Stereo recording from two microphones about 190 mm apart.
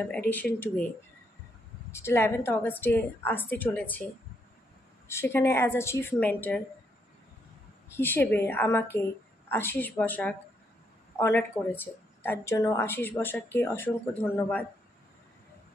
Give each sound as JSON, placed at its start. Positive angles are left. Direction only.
{"t": 1.9, "sound": "a woman's voice", "side_deg": 15}
{"t": 5.0, "sound": "a woman's voice", "side_deg": 15}
{"t": 7.9, "sound": "a woman's voice", "side_deg": 10}